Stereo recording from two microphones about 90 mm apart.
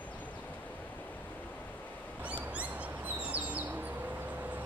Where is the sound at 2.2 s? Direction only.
15° right (ahead or behind).